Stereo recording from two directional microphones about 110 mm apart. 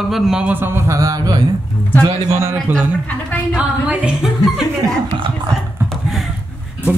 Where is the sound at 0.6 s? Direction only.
25° right (ahead or behind).